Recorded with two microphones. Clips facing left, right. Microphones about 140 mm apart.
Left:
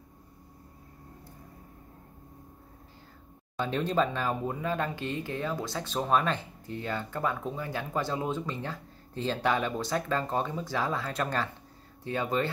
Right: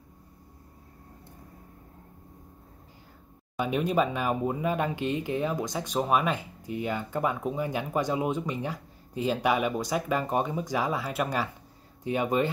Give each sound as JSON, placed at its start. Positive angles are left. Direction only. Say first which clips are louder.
{"t": 3.5, "sound": "speech", "louder": "right 2 dB", "side_deg": -10}